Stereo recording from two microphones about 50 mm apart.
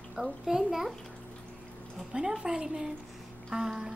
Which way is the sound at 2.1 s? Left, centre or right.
Centre.